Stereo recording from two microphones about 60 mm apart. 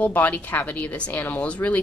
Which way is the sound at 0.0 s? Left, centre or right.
Left.